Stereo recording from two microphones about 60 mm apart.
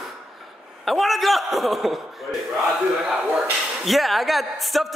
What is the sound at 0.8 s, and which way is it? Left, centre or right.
A man's voice, centre.